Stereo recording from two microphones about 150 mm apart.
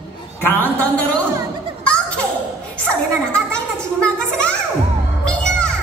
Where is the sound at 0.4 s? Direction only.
15° left (ahead or behind).